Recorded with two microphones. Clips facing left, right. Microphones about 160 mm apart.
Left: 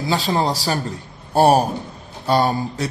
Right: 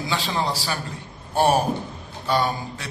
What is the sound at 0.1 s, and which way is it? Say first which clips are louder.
A man's voice: left 6 dB; 40° left (ahead or behind).